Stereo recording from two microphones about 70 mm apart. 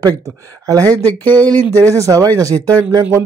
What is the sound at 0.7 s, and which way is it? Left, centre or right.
Speech, right.